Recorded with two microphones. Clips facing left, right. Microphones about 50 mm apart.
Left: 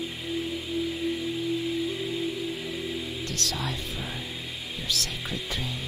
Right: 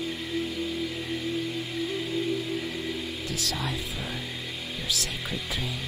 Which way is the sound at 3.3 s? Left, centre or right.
Centre.